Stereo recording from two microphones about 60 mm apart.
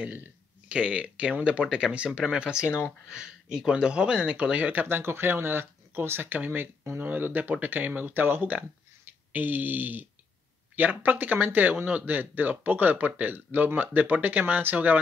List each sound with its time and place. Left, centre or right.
0.7 s speech: centre
2.6 s speech: left
3.1 s speech: centre
4.8 s speech: right